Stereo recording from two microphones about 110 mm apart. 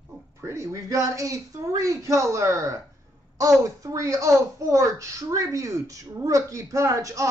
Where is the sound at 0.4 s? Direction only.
25° right (ahead or behind).